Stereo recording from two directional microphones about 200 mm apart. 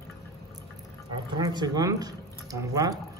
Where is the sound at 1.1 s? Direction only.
20° right (ahead or behind).